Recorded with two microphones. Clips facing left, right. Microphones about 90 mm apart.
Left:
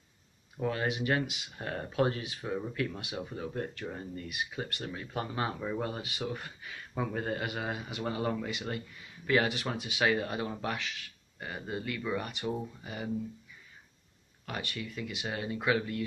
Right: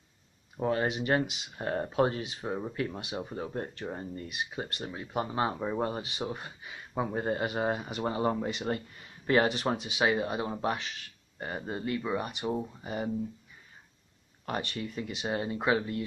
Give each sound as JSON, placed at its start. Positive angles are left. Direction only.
{"t": 0.6, "sound": "speech", "side_deg": -30}
{"t": 12.8, "sound": "speech", "side_deg": -35}
{"t": 14.4, "sound": "speech", "side_deg": -35}